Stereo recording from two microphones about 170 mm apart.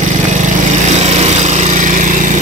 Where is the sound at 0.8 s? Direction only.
40° right (ahead or behind).